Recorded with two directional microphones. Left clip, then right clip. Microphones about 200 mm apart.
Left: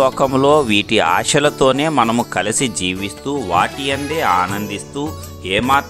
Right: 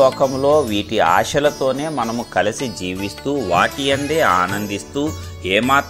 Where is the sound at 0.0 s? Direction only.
35° left (ahead or behind).